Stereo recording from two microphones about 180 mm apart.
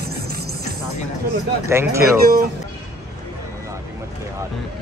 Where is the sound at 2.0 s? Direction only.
55° right (ahead or behind).